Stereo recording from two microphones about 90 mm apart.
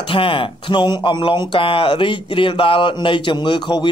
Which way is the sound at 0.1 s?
75° left (ahead or behind).